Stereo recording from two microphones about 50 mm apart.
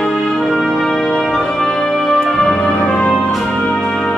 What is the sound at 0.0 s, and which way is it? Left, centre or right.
Music, centre.